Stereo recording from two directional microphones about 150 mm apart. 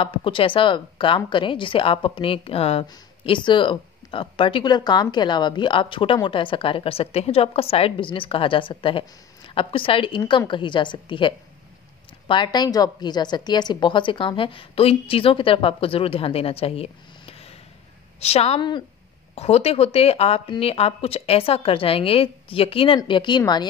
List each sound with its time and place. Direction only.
0.0 s a woman's voice: 35° left (ahead or behind)
19.3 s a woman's voice: 45° left (ahead or behind)